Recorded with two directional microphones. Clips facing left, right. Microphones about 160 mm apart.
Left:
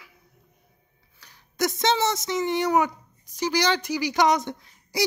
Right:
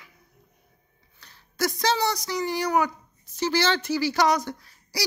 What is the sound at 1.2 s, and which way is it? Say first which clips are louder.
Speech: left 1 dB; 15° left (ahead or behind).